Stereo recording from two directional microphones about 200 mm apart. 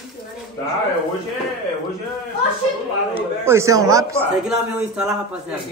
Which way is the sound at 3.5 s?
15° right (ahead or behind).